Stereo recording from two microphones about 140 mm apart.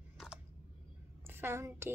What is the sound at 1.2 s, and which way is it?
Speech, 15° right (ahead or behind).